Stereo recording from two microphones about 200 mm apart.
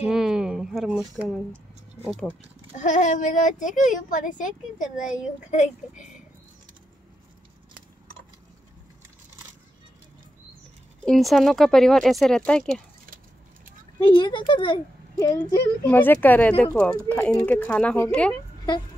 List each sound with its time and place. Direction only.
0.0 s speech: 5° right (ahead or behind)
2.7 s a child's voice: 40° left (ahead or behind)
11.1 s speech: centre (ahead or behind)
14.1 s speech: 25° left (ahead or behind)